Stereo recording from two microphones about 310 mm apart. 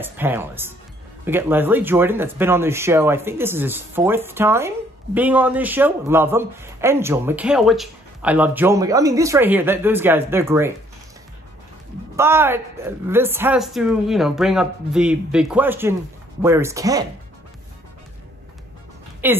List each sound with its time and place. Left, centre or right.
0.0 s speech: centre
12.2 s a woman's voice: centre
19.2 s speech: centre